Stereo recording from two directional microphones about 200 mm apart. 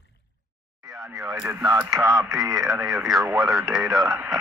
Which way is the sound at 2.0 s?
15° right (ahead or behind).